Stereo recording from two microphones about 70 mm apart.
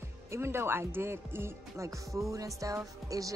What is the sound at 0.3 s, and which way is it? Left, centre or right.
Speech, right.